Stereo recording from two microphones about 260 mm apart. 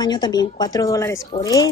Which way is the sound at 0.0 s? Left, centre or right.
Centre.